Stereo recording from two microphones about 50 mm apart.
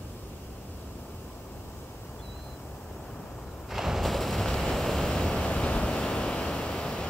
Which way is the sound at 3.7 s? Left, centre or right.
Centre.